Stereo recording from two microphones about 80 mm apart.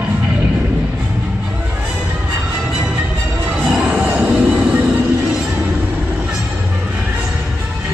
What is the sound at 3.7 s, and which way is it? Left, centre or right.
Music, centre.